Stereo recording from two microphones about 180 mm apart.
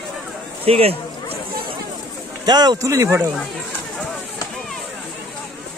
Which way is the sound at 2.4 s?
20° right (ahead or behind).